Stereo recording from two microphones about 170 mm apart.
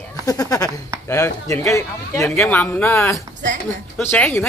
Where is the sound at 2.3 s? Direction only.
5° left (ahead or behind).